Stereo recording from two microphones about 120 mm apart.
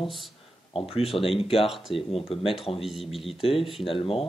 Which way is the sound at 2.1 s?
50° left (ahead or behind).